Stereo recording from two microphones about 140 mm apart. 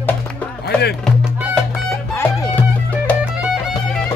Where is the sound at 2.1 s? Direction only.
15° left (ahead or behind).